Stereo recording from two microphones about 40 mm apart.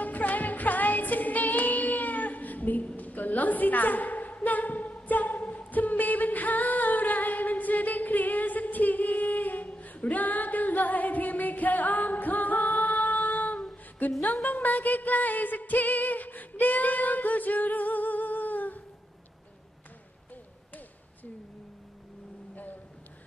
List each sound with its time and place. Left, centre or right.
0.0 s music: left
3.0 s a sound: left
14.2 s music: left